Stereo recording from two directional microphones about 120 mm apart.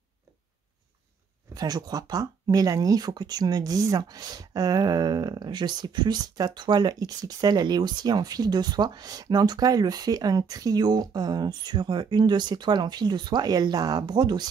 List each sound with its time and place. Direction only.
1.5 s speech: 30° right (ahead or behind)